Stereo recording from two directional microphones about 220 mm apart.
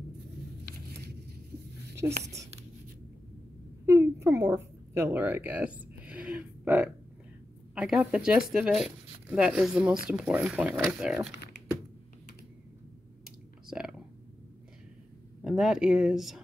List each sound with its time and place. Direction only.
0.7 s a sound: 45° right (ahead or behind)
2.2 s speech: 15° right (ahead or behind)
3.8 s a sound: 15° right (ahead or behind)
7.7 s speech: 5° right (ahead or behind)
13.2 s clicking: centre (ahead or behind)
15.4 s speech: centre (ahead or behind)